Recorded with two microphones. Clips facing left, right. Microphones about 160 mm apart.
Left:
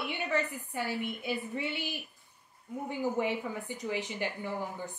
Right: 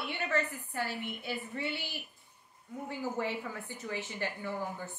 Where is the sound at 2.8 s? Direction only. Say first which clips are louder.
Left 4 dB; 15° left (ahead or behind).